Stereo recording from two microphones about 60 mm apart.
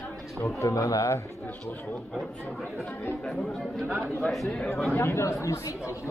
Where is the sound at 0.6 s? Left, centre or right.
Left.